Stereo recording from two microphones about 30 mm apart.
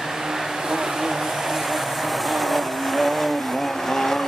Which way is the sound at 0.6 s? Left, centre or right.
Centre.